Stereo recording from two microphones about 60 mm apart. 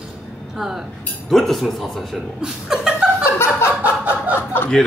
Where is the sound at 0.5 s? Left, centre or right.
Centre.